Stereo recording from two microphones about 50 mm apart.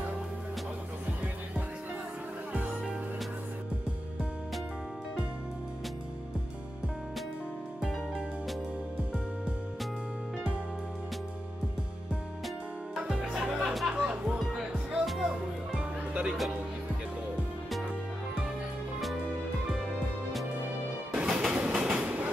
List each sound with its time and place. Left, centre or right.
13.1 s music: centre
13.7 s music: centre
13.9 s music: right
15.0 s music: centre
16.1 s music: right
21.3 s train: centre